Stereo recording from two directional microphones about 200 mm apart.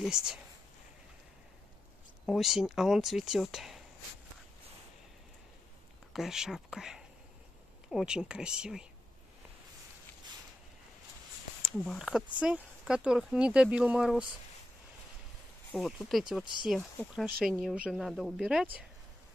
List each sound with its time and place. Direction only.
0.0 s speech: 5° right (ahead or behind)
2.2 s speech: centre (ahead or behind)
6.1 s speech: centre (ahead or behind)
11.6 s speech: 5° left (ahead or behind)
15.7 s speech: centre (ahead or behind)